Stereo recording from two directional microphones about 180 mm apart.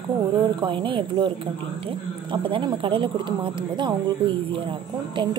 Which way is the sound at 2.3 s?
25° right (ahead or behind).